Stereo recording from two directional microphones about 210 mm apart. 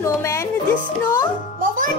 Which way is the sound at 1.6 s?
40° right (ahead or behind).